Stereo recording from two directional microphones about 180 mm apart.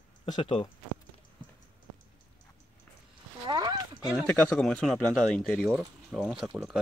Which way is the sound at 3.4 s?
25° right (ahead or behind).